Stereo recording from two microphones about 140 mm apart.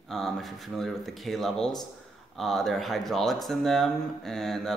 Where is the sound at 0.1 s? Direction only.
Centre (ahead or behind).